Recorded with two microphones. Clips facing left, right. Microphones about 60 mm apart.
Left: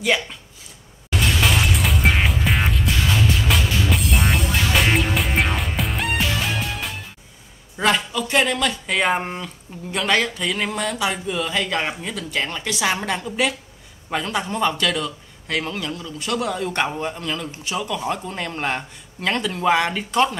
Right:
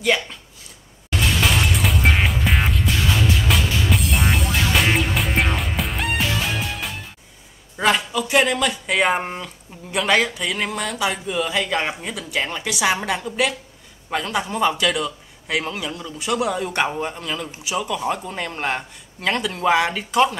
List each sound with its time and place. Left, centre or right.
0.0 s a man's voice: centre
1.1 s music: centre
7.7 s a man's voice: centre